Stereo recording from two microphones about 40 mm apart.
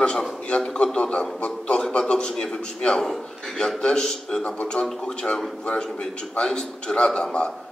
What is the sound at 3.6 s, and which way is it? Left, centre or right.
A man's voice, centre.